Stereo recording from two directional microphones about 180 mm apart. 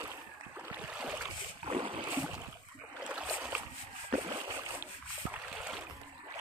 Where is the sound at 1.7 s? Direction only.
30° right (ahead or behind).